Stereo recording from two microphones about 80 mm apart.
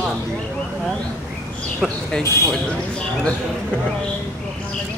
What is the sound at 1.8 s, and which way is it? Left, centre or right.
Speech, centre.